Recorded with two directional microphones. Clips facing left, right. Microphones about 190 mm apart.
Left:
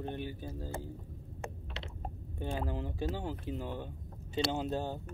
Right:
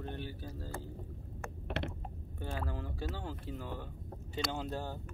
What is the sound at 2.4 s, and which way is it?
Speech, 20° left (ahead or behind).